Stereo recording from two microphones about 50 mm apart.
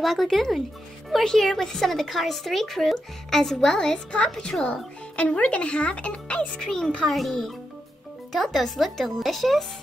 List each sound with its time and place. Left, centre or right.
0.0 s speech: centre; by 6.5 s left
6.6 s speech: centre